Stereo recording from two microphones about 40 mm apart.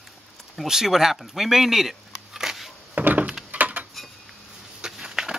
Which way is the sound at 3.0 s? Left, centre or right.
Right.